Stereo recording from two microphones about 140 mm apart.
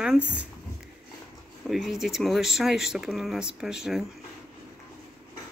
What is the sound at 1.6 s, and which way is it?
Speech, centre (ahead or behind).